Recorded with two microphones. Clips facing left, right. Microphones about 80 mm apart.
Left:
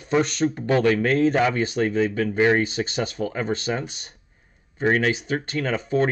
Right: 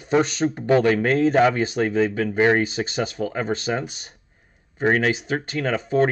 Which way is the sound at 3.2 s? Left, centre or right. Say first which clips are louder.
Right 1 dB; centre.